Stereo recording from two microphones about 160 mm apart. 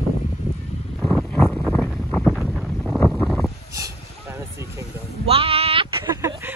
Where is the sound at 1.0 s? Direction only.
5° left (ahead or behind).